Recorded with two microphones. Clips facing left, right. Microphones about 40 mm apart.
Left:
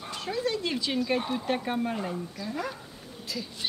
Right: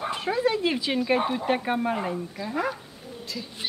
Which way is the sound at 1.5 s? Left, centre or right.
Centre.